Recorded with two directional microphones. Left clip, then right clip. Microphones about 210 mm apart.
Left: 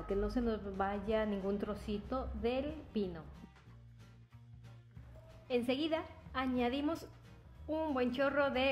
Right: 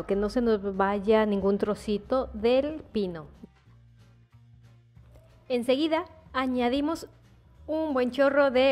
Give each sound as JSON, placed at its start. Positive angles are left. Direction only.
{"t": 0.0, "sound": "speech", "side_deg": -45}
{"t": 5.5, "sound": "a woman's voice", "side_deg": -40}
{"t": 7.6, "sound": "a woman's voice", "side_deg": -30}